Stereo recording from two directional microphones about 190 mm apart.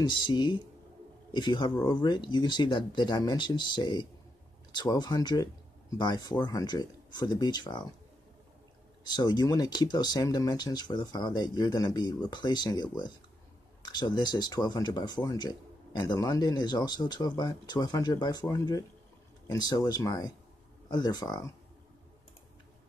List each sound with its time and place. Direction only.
0.0 s speech: 25° left (ahead or behind)
9.0 s speech: 20° left (ahead or behind)